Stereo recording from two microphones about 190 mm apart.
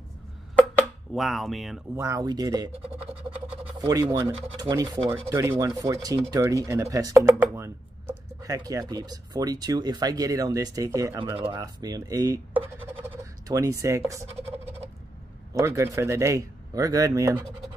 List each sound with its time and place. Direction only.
1.1 s speech: centre (ahead or behind)
2.0 s speech: 15° right (ahead or behind)
11.1 s speech: 25° right (ahead or behind)
12.5 s a sound: 15° right (ahead or behind)
15.5 s speech: 15° right (ahead or behind)